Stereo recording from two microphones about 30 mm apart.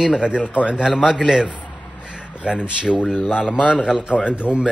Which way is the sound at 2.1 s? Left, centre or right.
Right.